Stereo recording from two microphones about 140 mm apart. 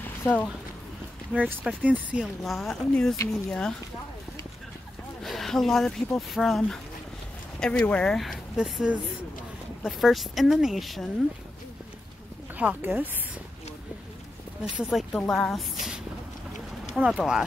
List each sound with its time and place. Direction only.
0.2 s speech: 10° left (ahead or behind)
1.3 s speech: 5° right (ahead or behind)
2.4 s speech: centre (ahead or behind)
5.2 s speech: centre (ahead or behind)
12.5 s speech: 10° right (ahead or behind)
14.8 s speech: centre (ahead or behind)